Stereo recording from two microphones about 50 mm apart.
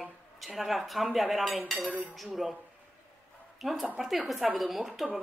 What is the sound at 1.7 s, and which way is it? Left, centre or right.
Cutlery, right.